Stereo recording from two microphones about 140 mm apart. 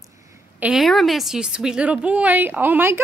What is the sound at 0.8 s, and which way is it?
A woman's voice, centre (ahead or behind).